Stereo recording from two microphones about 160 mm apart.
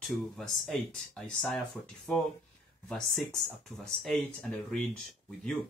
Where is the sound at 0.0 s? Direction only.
Centre (ahead or behind).